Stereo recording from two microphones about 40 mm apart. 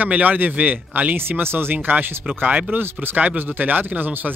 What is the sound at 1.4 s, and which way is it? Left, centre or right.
Speech, right.